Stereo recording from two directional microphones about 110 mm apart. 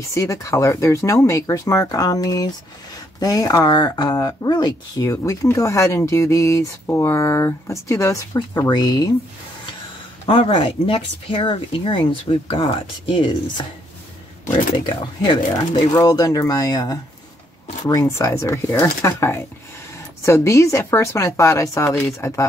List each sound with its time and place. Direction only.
0.1 s speech: 30° left (ahead or behind)
8.4 s speech: 40° left (ahead or behind)
10.2 s speech: 50° left (ahead or behind)
15.9 s speech: 35° left (ahead or behind)